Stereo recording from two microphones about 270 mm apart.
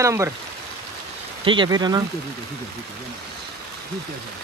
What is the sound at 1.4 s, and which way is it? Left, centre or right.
Speech, centre.